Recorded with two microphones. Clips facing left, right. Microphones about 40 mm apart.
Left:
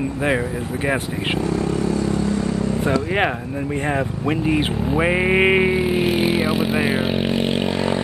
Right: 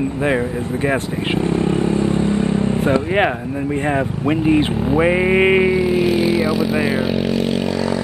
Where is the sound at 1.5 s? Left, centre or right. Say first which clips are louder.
Right 3 dB; right.